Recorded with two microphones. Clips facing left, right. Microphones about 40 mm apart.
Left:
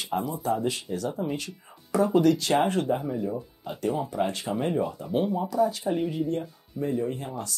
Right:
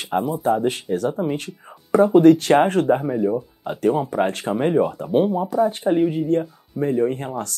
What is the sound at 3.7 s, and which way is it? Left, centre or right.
Speech, right.